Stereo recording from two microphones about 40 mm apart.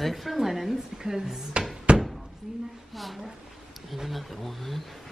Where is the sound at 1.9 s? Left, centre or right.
Right.